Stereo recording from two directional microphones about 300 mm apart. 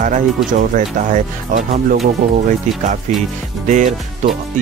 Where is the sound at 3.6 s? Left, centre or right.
Right.